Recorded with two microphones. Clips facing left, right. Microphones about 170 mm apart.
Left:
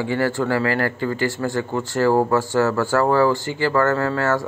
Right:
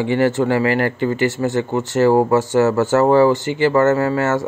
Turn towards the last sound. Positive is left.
turn(degrees=-20)  # may be behind; listen again after turning